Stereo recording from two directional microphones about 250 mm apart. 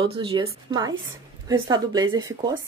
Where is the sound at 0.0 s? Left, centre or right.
Right.